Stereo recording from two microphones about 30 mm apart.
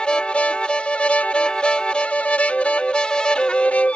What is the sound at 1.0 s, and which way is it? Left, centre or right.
Music, left.